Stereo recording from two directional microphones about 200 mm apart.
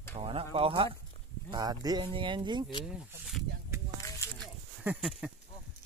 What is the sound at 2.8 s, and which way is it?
Speech, 5° right (ahead or behind).